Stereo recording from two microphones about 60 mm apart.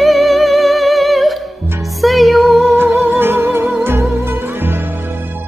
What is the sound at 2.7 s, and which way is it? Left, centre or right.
Music, right.